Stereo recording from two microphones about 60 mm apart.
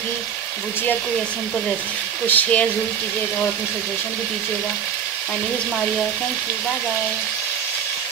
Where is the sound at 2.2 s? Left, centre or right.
Left.